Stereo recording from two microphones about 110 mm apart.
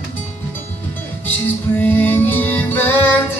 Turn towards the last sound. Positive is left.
turn(degrees=20)  # may be behind; listen again after turning